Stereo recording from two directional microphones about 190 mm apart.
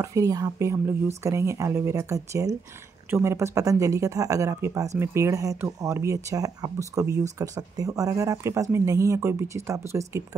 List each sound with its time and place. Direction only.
0.0 s speech: 15° right (ahead or behind)